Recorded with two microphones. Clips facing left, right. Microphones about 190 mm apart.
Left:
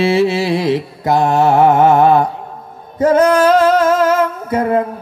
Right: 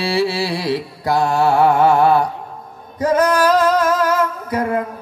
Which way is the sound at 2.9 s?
25° left (ahead or behind).